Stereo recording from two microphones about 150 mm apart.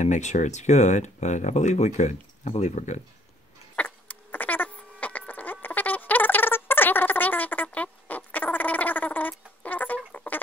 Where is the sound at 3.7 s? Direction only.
10° left (ahead or behind).